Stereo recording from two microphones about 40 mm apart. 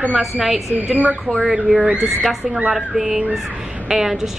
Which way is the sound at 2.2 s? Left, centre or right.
Centre.